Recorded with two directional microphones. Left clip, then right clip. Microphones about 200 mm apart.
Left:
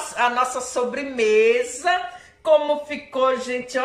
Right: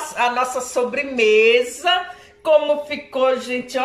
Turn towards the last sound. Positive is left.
turn(degrees=0)  # may be behind; listen again after turning